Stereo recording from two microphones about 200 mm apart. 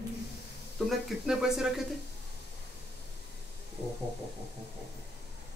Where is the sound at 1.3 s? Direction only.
Centre (ahead or behind).